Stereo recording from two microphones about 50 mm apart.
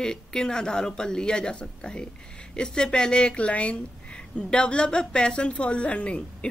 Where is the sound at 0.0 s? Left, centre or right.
Centre.